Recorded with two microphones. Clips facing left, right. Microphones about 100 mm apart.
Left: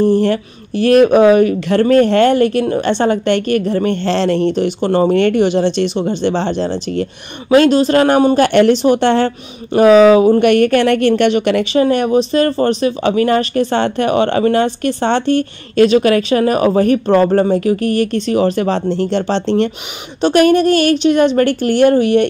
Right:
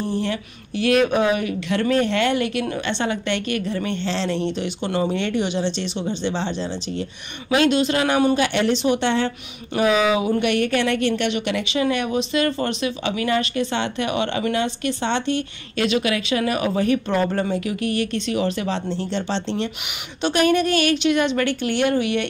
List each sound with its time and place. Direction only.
0.0 s speech: 75° left (ahead or behind)
0.3 s speech: 50° left (ahead or behind)
5.1 s speech: 60° left (ahead or behind)
7.5 s speech: 45° left (ahead or behind)
8.4 s speech: 55° left (ahead or behind)
20.2 s speech: 45° left (ahead or behind)